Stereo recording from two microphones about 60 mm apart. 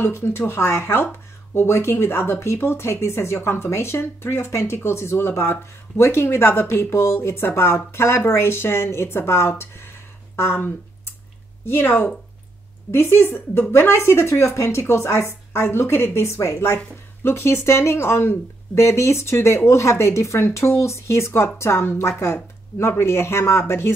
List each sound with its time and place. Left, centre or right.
0.0 s speech: left
10.5 s a sound: left
11.6 s speech: left